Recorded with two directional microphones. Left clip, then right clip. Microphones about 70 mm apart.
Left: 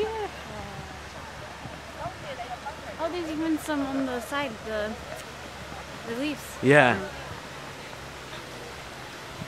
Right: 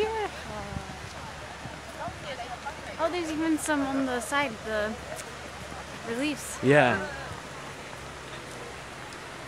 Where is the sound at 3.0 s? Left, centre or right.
Right.